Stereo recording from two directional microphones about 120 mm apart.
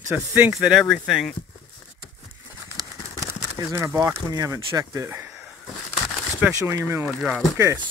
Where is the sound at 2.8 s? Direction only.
25° right (ahead or behind).